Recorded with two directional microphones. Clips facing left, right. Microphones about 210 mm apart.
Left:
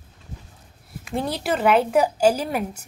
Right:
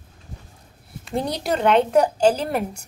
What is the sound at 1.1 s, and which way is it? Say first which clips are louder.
Speech: right 1 dB; 5° left (ahead or behind).